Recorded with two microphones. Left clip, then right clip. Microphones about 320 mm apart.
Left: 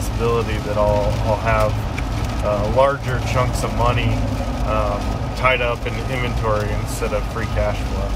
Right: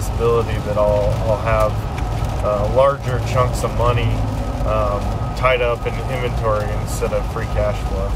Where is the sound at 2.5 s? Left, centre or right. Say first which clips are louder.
Right 1 dB; centre.